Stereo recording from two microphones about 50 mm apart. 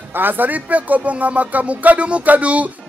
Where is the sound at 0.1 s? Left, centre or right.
Right.